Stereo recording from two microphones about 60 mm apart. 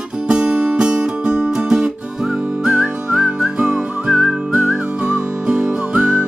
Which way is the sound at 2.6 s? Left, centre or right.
Centre.